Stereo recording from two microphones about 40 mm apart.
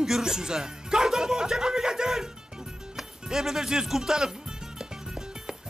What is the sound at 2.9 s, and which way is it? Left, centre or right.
Music, centre.